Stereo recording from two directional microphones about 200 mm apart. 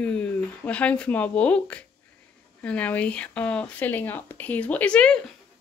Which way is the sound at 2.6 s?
5° left (ahead or behind).